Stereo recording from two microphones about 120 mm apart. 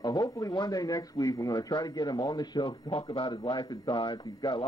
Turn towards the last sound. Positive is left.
turn(degrees=35)  # may be behind; listen again after turning